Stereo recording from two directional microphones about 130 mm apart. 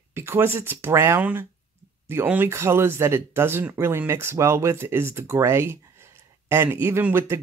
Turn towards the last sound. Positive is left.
turn(degrees=-20)  # may be behind; listen again after turning